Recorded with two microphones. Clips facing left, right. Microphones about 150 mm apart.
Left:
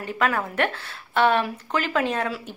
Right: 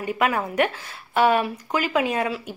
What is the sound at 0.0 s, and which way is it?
Speech, 10° right (ahead or behind).